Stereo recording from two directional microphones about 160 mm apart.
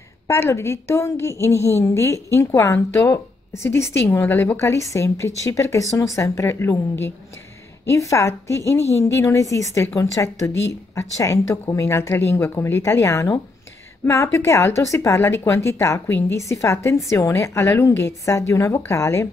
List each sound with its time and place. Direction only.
0.3 s a woman's voice: 15° left (ahead or behind)